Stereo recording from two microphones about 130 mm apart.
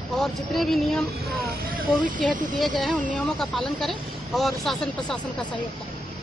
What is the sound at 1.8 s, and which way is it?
Speech, 90° right.